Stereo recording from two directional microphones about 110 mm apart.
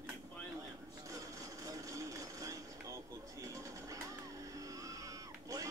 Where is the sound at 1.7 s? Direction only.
30° right (ahead or behind).